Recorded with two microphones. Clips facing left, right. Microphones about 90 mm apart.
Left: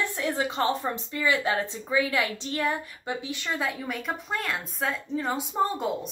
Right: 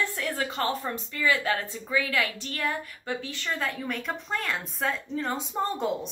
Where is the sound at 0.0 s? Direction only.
20° left (ahead or behind).